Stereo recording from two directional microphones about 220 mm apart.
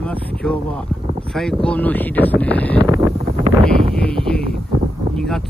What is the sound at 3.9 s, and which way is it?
Speech, 5° left (ahead or behind).